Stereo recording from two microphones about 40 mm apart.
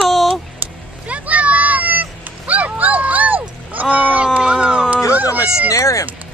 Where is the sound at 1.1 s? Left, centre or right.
Right.